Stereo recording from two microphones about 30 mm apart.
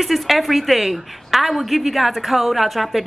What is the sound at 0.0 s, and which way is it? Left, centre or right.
A woman's voice, centre.